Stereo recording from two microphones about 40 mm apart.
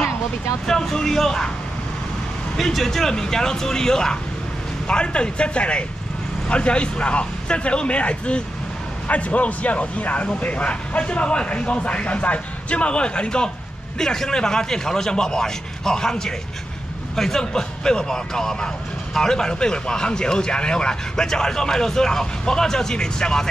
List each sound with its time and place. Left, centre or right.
0.7 s speech: centre
2.5 s a man's voice: centre